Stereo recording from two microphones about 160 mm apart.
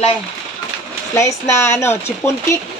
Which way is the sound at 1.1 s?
15° left (ahead or behind).